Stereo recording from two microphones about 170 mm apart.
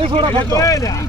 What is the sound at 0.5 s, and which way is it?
Speech, 20° left (ahead or behind).